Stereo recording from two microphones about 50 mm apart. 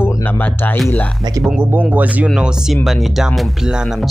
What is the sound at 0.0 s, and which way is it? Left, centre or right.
Speech, left.